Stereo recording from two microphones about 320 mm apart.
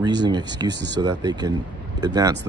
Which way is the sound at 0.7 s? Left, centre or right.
Right.